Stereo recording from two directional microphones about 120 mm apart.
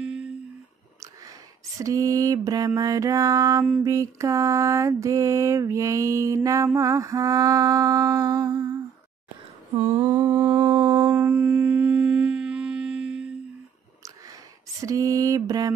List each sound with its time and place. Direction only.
0.0 s humming: 10° right (ahead or behind)
1.8 s mantra: 30° right (ahead or behind)
9.8 s humming: 55° right (ahead or behind)
10.1 s mantra: 35° right (ahead or behind)
11.1 s music: 10° right (ahead or behind)
14.8 s mantra: 30° right (ahead or behind)